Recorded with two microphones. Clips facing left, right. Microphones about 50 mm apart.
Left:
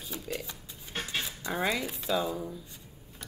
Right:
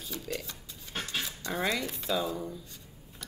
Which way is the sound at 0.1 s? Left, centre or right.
Centre.